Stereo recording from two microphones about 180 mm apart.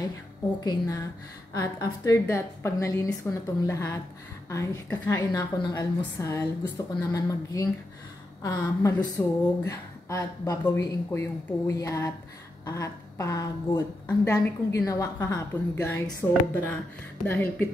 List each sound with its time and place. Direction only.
0.7 s a woman's voice: 20° left (ahead or behind)